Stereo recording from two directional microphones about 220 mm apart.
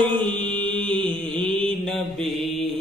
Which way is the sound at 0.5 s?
5° left (ahead or behind).